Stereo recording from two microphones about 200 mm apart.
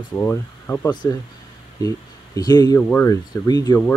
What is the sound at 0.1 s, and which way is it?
Speech, 15° left (ahead or behind).